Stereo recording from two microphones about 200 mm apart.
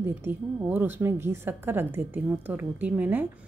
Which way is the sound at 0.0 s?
10° right (ahead or behind).